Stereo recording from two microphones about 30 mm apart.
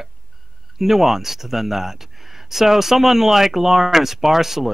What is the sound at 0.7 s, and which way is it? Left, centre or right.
Speech, centre.